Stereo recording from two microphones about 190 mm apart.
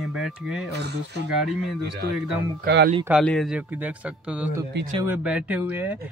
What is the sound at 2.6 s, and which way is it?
Speech, 60° right (ahead or behind).